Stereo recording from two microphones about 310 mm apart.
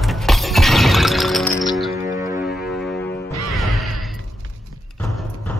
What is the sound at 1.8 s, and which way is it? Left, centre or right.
Music, centre.